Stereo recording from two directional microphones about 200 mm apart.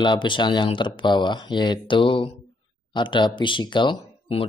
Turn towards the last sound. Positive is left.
turn(degrees=25)  # may be behind; listen again after turning